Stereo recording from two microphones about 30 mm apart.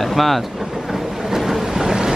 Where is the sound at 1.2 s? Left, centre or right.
Centre.